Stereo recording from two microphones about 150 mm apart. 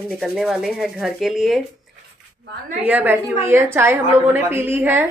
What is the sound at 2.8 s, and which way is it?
A woman's voice, 10° right (ahead or behind).